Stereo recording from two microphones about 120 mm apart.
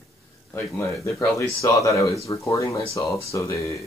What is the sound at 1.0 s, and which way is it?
Speech, 25° left (ahead or behind).